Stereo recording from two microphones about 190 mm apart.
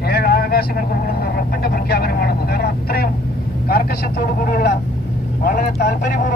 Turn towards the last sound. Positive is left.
turn(degrees=40)  # may be behind; listen again after turning